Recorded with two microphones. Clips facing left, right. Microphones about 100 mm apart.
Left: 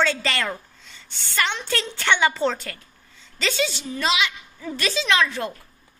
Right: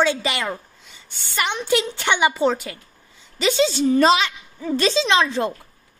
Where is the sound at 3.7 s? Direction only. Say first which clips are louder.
Right 10 dB; 40° right (ahead or behind).